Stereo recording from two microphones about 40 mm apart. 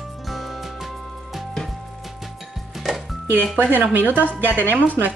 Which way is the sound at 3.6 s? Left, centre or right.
Right.